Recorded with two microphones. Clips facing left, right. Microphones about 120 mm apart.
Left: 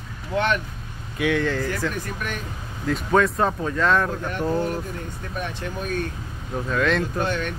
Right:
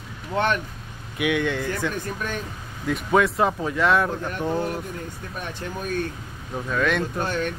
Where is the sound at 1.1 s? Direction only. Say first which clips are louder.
Left 1 dB; 15° right (ahead or behind).